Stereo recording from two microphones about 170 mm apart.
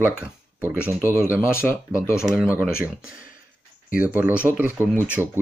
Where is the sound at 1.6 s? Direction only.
Centre (ahead or behind).